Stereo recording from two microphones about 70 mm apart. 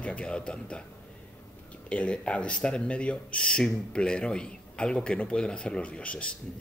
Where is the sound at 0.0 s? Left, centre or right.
Centre.